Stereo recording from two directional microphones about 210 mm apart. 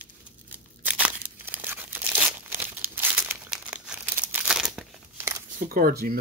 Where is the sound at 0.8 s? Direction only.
5° right (ahead or behind).